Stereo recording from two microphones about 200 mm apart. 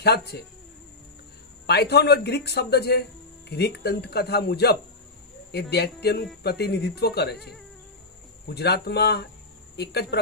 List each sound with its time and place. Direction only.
0.0 s speech: 55° left (ahead or behind)
1.7 s speech: 55° left (ahead or behind)
8.5 s speech: 55° left (ahead or behind)